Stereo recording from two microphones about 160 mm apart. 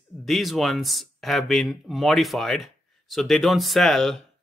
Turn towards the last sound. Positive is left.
turn(degrees=0)  # may be behind; listen again after turning